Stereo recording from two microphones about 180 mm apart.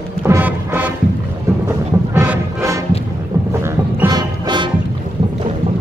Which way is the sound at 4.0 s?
25° right (ahead or behind).